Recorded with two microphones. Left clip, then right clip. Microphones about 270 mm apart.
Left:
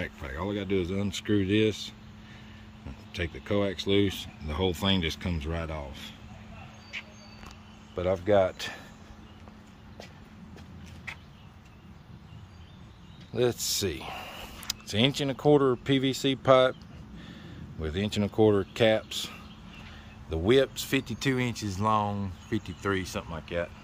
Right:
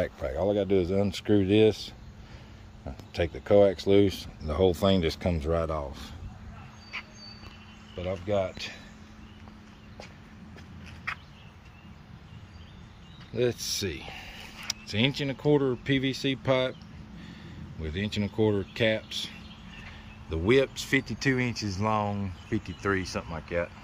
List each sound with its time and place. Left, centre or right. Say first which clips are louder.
0.0 s speech: right 7 dB; centre
3.1 s speech: right 7 dB; centre
8.3 s speech: left 5 dB; left
8.5 s speech: left 1 dB; centre
13.3 s speech: left 1 dB; centre
17.8 s speech: left 2 dB; centre